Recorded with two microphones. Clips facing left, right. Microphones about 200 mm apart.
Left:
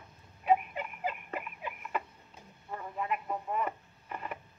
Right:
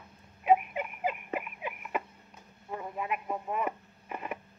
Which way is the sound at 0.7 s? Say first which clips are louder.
Right 3 dB; 10° right (ahead or behind).